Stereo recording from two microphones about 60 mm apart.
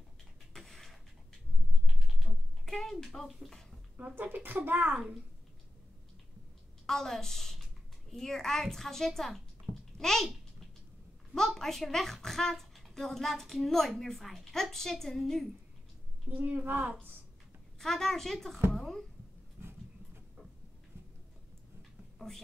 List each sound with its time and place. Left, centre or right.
0.6 s a sound: centre
1.9 s typing: centre
3.9 s a child's voice: right
6.9 s a woman's voice: centre
11.3 s a woman's voice: centre
16.3 s a child's voice: right
17.7 s a woman's voice: centre